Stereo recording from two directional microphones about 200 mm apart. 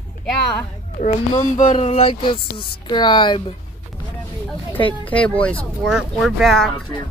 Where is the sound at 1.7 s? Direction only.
30° left (ahead or behind).